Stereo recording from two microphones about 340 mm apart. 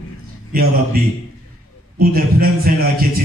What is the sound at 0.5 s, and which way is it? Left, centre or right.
Mantra, right.